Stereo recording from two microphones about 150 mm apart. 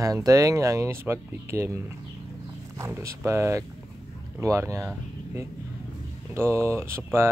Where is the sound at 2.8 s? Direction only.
20° right (ahead or behind).